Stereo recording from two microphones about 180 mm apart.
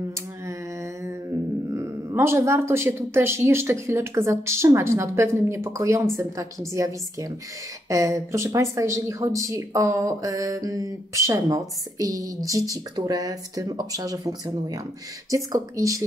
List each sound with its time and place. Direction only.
1.7 s speech: 15° right (ahead or behind)